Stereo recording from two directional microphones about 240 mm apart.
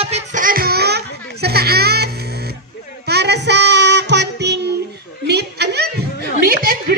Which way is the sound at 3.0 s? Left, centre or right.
Right.